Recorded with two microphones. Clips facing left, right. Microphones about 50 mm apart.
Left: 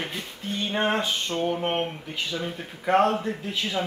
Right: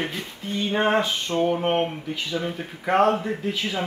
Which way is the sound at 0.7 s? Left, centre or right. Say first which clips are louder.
Right 4 dB; right.